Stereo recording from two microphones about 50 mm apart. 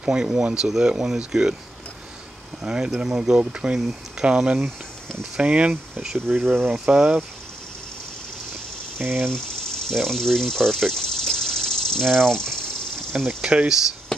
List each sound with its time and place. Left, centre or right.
0.0 s speech: centre
2.6 s speech: centre
6.4 s speech: right
6.9 s speech: centre
8.9 s speech: right
9.3 s a sound: centre
13.4 s speech: centre